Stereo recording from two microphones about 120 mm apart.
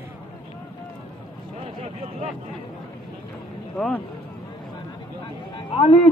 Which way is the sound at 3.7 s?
15° left (ahead or behind).